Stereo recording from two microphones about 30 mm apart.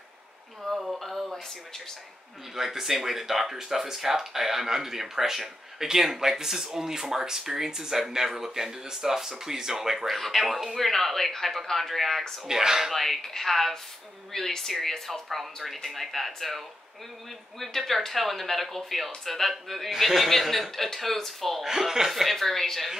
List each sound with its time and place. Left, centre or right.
0.9 s speech: centre
2.5 s speech: centre
10.0 s speech: centre
12.4 s speech: centre
12.9 s speech: centre
21.6 s speech: centre
22.1 s speech: centre